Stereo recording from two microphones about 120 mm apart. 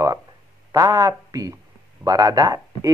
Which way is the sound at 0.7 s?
30° right (ahead or behind).